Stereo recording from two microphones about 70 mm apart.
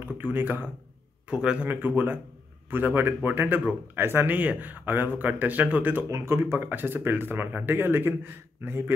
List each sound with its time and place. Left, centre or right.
0.0 s speech: right
1.3 s a man's voice: centre
1.7 s speech: right
6.0 s speech: right